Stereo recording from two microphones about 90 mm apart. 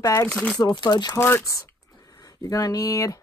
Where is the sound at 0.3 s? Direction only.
5° left (ahead or behind).